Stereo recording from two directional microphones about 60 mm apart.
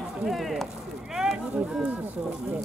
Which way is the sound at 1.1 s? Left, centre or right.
Centre.